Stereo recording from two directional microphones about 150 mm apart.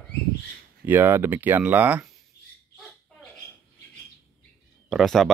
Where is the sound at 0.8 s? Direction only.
15° right (ahead or behind).